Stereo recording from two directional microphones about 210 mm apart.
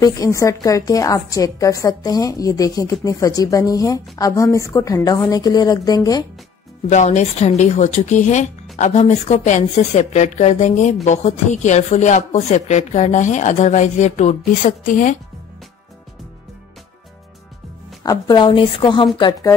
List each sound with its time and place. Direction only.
0.0 s a woman's voice: 15° left (ahead or behind)
6.9 s speech: 35° left (ahead or behind)
18.0 s a woman's voice: 20° left (ahead or behind)